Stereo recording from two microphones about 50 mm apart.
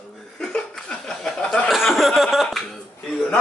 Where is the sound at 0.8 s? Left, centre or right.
Centre.